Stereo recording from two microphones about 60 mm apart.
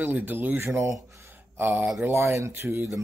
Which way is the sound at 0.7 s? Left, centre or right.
Right.